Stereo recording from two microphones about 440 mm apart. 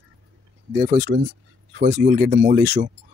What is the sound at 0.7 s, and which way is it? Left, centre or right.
Speech, centre.